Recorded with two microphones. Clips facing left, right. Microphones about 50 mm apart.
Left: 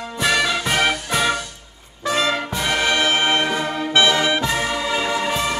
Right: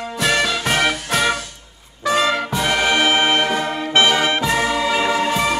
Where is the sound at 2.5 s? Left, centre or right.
Centre.